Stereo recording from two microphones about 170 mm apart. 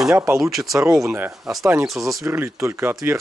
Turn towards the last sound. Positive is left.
turn(degrees=-15)  # may be behind; listen again after turning